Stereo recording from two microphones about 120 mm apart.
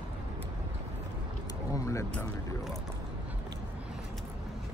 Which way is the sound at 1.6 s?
25° left (ahead or behind).